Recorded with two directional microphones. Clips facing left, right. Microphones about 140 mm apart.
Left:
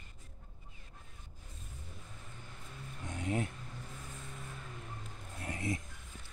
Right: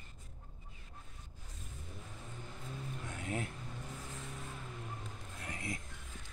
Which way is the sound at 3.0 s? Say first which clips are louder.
Left 5 dB; 20° left (ahead or behind).